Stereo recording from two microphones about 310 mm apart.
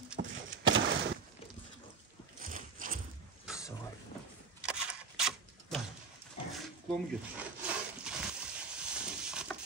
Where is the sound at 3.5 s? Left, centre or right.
Centre.